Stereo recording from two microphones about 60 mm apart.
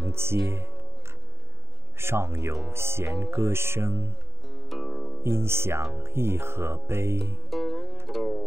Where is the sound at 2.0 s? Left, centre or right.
Right.